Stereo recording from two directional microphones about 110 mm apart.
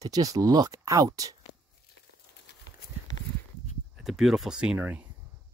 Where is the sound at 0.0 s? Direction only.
35° right (ahead or behind).